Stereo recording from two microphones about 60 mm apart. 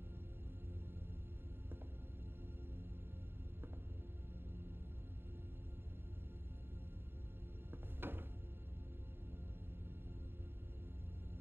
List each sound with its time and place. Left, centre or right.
7.7 s music: right